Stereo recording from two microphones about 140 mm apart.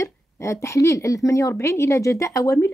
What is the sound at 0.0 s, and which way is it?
Speech, 20° left (ahead or behind).